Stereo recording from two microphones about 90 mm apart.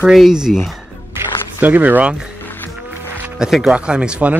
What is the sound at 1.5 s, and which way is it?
Speech, 20° right (ahead or behind).